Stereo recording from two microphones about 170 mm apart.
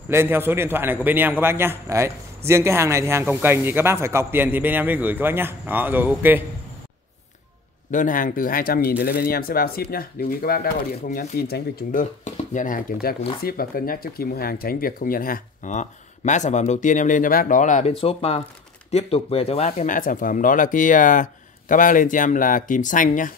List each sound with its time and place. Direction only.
0.1 s a man's voice: 15° right (ahead or behind)
7.9 s speech: 50° left (ahead or behind)